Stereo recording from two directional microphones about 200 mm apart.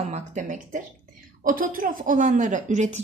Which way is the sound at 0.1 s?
35° right (ahead or behind).